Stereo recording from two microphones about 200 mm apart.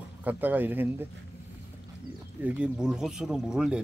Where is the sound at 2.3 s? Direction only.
5° right (ahead or behind).